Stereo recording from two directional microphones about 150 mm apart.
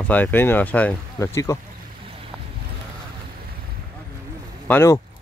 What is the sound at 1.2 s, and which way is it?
Speech, 20° left (ahead or behind).